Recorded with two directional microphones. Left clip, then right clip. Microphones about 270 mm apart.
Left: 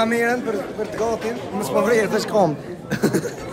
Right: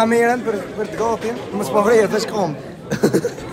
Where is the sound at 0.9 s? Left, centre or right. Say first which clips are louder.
Right 3 dB; right.